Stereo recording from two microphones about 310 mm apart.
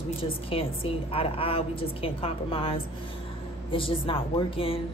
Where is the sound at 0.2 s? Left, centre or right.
Centre.